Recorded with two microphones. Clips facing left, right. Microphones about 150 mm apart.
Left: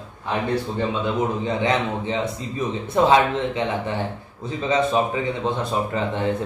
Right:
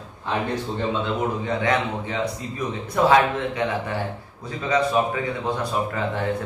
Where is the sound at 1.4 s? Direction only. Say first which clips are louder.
Left 1 dB; 20° left (ahead or behind).